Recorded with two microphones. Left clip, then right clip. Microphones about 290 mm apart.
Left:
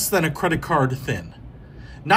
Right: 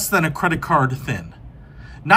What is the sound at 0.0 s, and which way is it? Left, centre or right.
A man's voice, centre.